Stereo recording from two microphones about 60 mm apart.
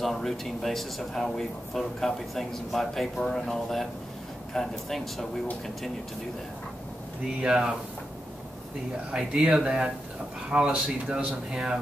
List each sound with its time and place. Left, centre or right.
0.0 s speech: centre
7.4 s speech: centre
9.1 s speech: centre